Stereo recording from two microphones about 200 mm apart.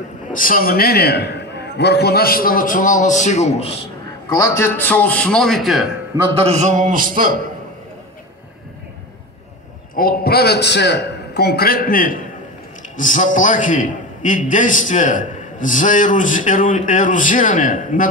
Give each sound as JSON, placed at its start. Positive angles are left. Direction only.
{"t": 0.3, "sound": "a man's voice", "side_deg": 45}
{"t": 4.3, "sound": "a man's voice", "side_deg": 15}
{"t": 6.3, "sound": "a man's voice", "side_deg": -30}
{"t": 9.9, "sound": "a man's voice", "side_deg": 50}